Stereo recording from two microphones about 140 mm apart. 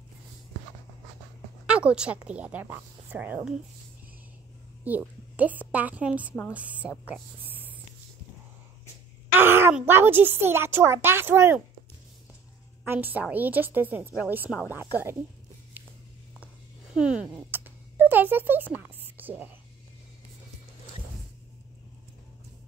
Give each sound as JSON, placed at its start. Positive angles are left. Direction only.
{"t": 1.7, "sound": "a woman's voice", "side_deg": -10}
{"t": 4.8, "sound": "speech", "side_deg": -10}
{"t": 7.4, "sound": "whispering", "side_deg": -15}
{"t": 9.4, "sound": "speech", "side_deg": -15}
{"t": 12.8, "sound": "speech", "side_deg": -15}
{"t": 15.8, "sound": "a sound", "side_deg": -15}
{"t": 16.9, "sound": "speech", "side_deg": -5}